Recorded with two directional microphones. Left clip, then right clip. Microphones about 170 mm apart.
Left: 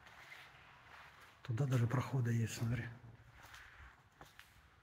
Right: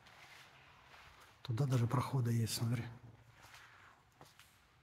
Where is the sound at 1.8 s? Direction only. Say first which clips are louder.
Right 2 dB; 20° right (ahead or behind).